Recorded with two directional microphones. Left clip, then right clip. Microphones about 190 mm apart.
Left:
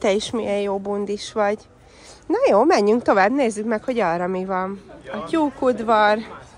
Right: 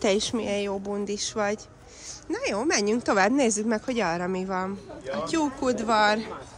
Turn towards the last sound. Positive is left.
turn(degrees=-10)  # may be behind; listen again after turning